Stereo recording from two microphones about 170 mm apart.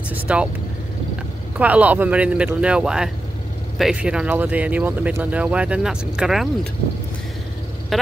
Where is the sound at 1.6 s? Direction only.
10° right (ahead or behind).